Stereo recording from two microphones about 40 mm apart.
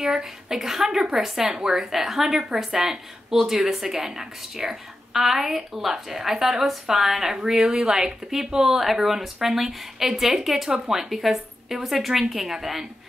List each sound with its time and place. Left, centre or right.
0.0 s speech: centre